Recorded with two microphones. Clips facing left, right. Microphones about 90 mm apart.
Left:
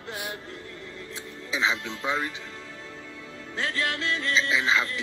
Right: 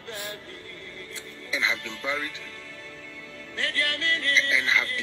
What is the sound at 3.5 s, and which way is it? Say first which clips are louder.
Speech: left 1 dB; 20° left (ahead or behind).